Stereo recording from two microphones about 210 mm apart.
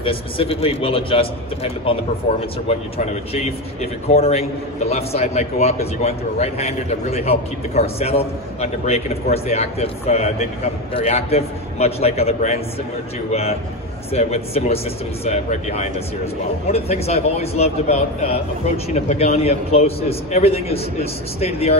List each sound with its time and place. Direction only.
0.0 s a man's voice: 25° left (ahead or behind)